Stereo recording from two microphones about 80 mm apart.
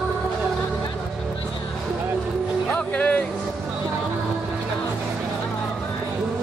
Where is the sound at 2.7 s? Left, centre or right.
Centre.